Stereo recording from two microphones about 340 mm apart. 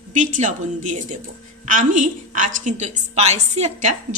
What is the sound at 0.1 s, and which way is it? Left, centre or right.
A woman's voice, right.